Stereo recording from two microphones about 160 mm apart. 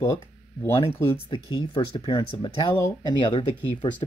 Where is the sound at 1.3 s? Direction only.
30° left (ahead or behind).